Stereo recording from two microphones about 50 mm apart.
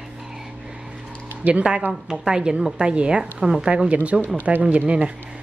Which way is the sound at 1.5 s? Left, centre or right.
Centre.